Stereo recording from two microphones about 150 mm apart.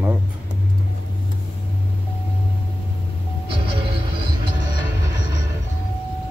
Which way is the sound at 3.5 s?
35° right (ahead or behind).